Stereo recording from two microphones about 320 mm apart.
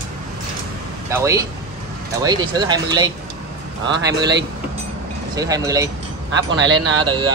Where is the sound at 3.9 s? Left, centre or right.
Right.